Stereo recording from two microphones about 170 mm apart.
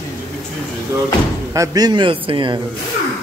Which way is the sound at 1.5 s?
20° right (ahead or behind).